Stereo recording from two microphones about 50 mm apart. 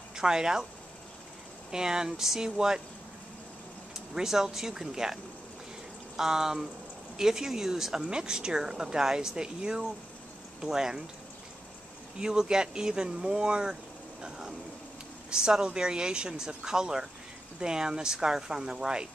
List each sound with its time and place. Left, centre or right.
0.1 s speech: centre
1.7 s speech: centre
4.1 s speech: centre
12.2 s speech: centre
15.2 s speech: centre